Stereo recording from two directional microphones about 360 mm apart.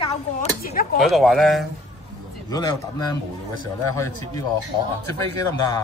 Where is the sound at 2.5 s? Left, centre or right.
Centre.